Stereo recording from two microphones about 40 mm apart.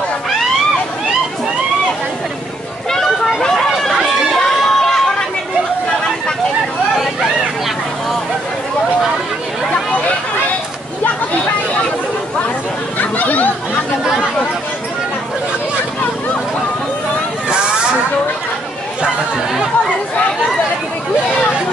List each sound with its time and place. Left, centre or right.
3.3 s a sound: centre
3.7 s run: centre
13.0 s chatter: left